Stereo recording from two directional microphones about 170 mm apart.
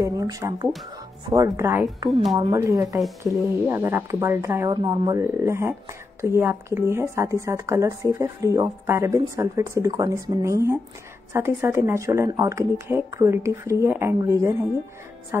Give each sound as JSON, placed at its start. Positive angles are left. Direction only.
{"t": 0.0, "sound": "speech", "side_deg": -20}